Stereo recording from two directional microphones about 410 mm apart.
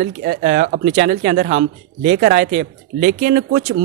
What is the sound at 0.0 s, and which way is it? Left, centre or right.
Speech, right.